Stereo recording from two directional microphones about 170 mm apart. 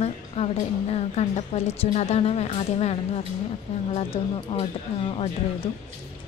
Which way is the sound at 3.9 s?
35° left (ahead or behind).